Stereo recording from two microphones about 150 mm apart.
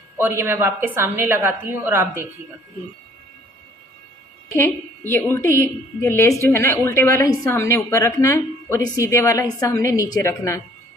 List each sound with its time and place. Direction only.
0.2 s a woman's voice: 15° right (ahead or behind)
5.1 s a woman's voice: 20° left (ahead or behind)